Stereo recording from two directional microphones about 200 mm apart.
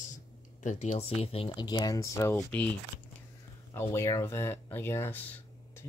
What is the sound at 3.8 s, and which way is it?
Speech, 15° left (ahead or behind).